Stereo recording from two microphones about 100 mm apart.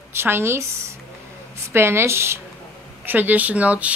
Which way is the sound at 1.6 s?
25° right (ahead or behind).